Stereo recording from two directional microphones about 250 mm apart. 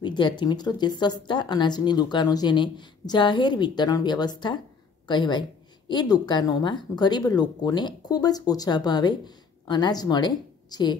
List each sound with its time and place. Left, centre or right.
0.0 s speech: centre